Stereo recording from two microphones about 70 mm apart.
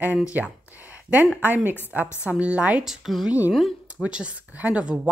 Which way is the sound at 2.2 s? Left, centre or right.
Centre.